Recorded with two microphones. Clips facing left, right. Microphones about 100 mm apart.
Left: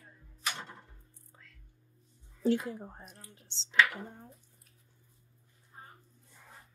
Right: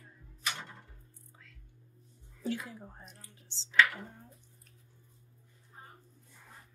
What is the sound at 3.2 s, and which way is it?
Speech, 20° left (ahead or behind).